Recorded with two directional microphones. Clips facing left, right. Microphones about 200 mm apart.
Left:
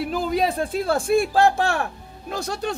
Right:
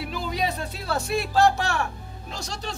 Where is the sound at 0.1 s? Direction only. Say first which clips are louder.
Left 5 dB; 50° left (ahead or behind).